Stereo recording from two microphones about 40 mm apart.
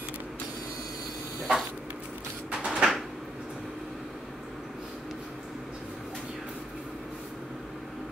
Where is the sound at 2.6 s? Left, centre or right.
Right.